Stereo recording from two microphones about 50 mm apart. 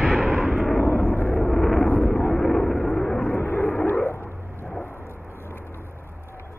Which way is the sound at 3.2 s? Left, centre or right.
Left.